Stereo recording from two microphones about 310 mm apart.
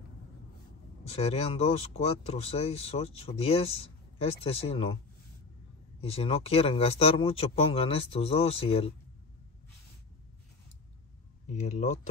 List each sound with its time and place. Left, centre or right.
1.1 s a man's voice: centre
5.9 s a man's voice: centre
11.4 s a man's voice: left